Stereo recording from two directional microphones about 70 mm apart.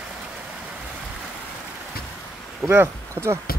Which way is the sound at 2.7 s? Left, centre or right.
Right.